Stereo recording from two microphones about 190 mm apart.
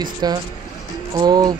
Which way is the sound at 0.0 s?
20° right (ahead or behind).